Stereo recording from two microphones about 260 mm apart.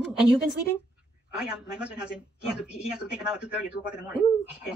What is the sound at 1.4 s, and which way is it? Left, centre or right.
Speech, centre.